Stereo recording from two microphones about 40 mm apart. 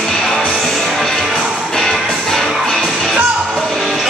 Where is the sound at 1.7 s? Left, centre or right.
Centre.